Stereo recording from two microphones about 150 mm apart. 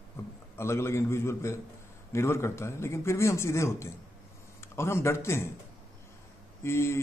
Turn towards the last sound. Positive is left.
turn(degrees=15)  # may be behind; listen again after turning